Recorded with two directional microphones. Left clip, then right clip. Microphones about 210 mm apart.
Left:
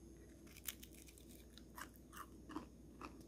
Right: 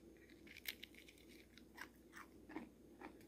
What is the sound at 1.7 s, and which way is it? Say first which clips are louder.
Biting: left 2 dB; 20° left (ahead or behind).